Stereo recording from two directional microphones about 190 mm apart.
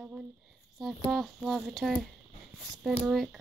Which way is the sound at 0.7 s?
Centre (ahead or behind).